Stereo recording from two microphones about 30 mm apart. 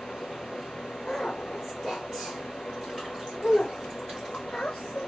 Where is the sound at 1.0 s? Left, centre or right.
Centre.